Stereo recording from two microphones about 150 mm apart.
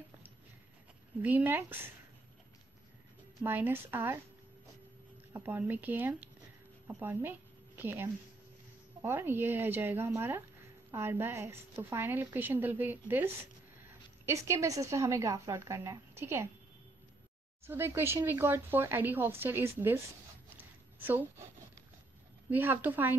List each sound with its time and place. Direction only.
1.2 s a woman's voice: 10° right (ahead or behind)
3.4 s a woman's voice: 15° right (ahead or behind)
5.3 s a woman's voice: 15° right (ahead or behind)
17.6 s a woman's voice: 15° right (ahead or behind)
20.5 s a sound: 15° right (ahead or behind)
22.5 s a woman's voice: 15° right (ahead or behind)